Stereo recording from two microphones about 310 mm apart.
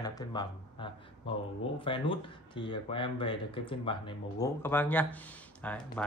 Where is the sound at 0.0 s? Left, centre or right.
Centre.